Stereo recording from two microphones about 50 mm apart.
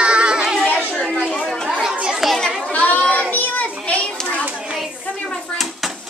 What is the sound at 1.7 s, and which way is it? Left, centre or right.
Chatter, centre.